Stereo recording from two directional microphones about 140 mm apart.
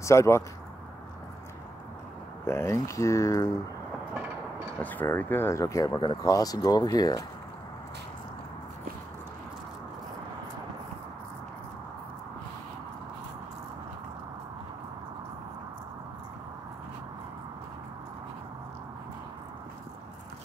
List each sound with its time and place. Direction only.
0.0 s speech: 20° left (ahead or behind)
2.4 s speech: 20° left (ahead or behind)
4.8 s speech: 15° left (ahead or behind)